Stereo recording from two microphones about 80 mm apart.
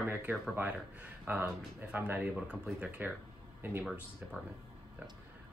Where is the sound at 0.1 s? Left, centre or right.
Right.